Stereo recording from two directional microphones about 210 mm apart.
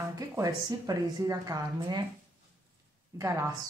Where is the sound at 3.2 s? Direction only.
15° right (ahead or behind).